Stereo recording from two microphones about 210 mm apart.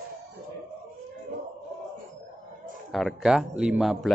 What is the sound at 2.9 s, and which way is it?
Speech, centre (ahead or behind).